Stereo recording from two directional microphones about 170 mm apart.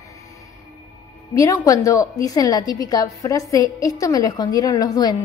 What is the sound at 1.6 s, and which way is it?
A woman's voice, 20° left (ahead or behind).